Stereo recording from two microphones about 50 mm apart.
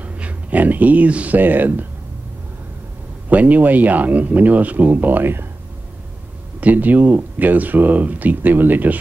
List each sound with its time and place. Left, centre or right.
0.0 s speech: right
3.3 s speech: right
6.6 s speech: right